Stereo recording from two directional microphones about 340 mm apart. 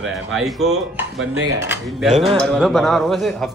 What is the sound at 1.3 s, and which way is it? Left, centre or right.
Speech, right.